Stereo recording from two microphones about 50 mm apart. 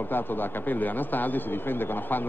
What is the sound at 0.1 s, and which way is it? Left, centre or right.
Speech, left.